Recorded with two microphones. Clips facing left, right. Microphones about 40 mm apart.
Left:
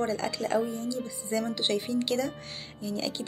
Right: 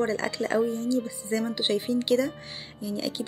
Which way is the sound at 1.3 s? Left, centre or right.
Centre.